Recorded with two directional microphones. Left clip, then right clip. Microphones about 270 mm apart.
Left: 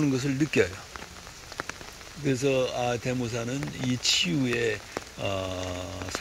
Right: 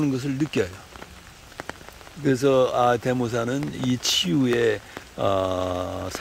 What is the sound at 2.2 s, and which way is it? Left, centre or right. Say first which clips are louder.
Speech: right 6 dB; centre.